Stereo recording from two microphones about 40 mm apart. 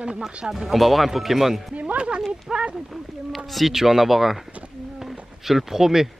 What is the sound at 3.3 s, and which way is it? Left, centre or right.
Speech, centre.